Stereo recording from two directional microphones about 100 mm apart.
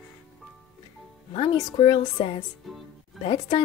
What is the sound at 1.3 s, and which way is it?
A woman's voice, 60° left (ahead or behind).